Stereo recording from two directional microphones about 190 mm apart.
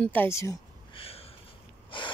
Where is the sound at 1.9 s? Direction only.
25° left (ahead or behind).